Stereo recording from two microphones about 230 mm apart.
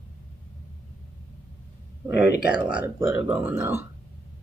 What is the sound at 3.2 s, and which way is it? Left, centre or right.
Speech, centre.